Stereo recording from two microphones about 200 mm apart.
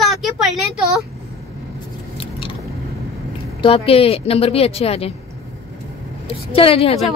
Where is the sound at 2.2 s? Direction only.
25° left (ahead or behind).